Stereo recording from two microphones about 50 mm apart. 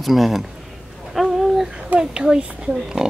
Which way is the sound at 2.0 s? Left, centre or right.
Centre.